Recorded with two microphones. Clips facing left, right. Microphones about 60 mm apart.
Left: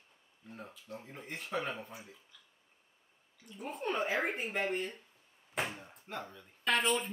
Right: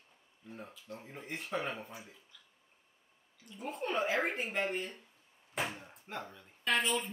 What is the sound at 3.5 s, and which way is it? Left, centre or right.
Speech, centre.